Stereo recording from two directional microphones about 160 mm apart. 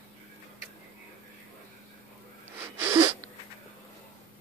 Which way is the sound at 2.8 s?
15° right (ahead or behind).